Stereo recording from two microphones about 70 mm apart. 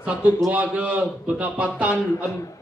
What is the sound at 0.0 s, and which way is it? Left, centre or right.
A man's voice, centre.